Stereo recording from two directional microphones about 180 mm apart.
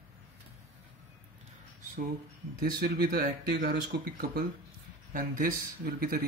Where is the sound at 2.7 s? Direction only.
55° right (ahead or behind).